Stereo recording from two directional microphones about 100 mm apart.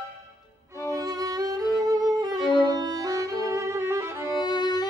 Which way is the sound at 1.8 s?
40° right (ahead or behind).